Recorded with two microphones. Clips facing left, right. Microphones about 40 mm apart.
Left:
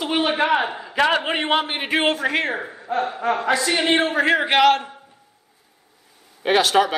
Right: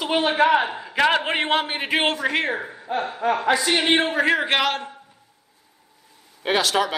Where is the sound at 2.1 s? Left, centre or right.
Centre.